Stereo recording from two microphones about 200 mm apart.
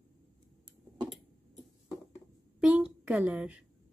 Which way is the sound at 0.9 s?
20° right (ahead or behind).